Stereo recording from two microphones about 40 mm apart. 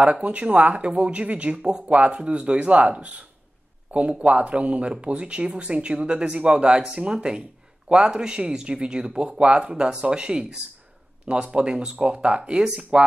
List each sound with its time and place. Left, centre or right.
0.0 s speech: right